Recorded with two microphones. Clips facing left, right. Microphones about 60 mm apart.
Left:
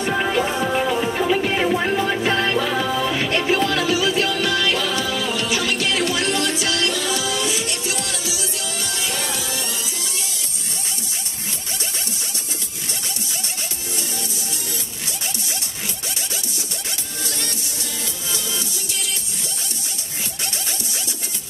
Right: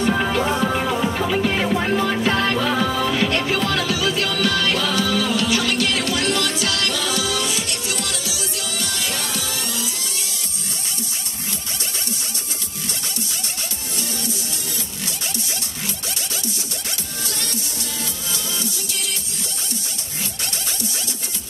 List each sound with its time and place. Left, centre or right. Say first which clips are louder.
0.1 s music: even; centre
0.7 s music: left 1 dB; centre
1.0 s music: left 1 dB; left
1.5 s music: left 1 dB; centre
1.9 s music: even; left